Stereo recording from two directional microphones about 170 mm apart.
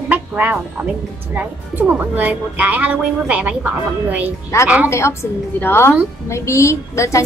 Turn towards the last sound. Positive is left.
turn(degrees=15)  # may be behind; listen again after turning